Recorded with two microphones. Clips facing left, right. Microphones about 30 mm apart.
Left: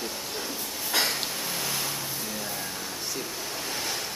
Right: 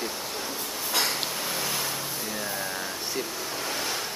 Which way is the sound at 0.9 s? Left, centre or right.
Centre.